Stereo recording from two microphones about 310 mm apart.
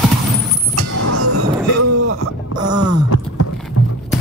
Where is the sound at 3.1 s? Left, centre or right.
Left.